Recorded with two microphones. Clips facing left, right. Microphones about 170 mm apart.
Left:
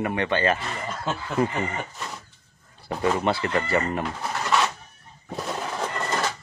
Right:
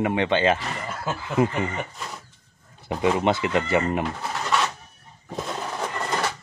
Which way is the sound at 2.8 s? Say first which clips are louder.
Right 2 dB; 15° right (ahead or behind).